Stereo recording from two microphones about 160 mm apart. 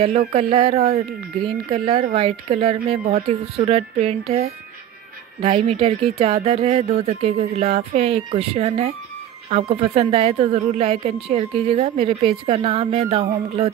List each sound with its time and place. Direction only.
0.3 s speech: 40° right (ahead or behind)